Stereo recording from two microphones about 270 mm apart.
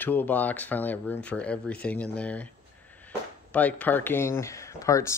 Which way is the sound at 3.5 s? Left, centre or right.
Centre.